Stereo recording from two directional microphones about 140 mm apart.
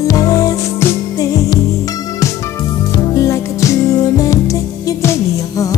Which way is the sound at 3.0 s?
25° left (ahead or behind).